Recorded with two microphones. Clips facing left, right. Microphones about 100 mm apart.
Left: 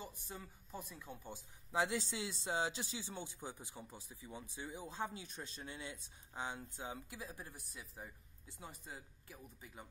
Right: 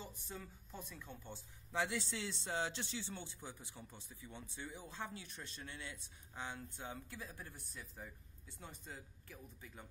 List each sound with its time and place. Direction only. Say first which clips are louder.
0.0 s a sound: left 1 dB; 50° left (ahead or behind)
0.3 s speech: left 1 dB; 10° left (ahead or behind)
7.7 s speech: even; 5° left (ahead or behind)
8.0 s speech: even; 15° left (ahead or behind)